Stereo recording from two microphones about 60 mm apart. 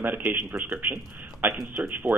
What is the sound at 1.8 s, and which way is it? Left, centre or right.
Speech, right.